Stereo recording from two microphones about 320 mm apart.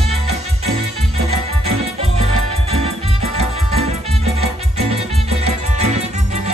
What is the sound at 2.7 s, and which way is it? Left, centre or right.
Music, centre.